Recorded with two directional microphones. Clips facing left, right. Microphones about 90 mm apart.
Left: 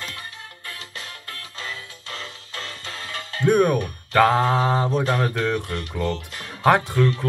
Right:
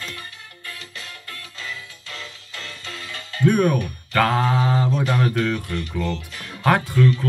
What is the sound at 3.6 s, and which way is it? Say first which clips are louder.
Mantra: right 1 dB; 30° left (ahead or behind).